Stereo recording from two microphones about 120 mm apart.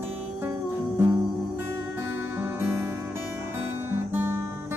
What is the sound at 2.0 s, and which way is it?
Music, 20° right (ahead or behind).